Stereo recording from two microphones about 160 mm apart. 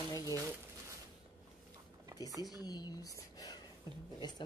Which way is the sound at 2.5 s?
25° left (ahead or behind).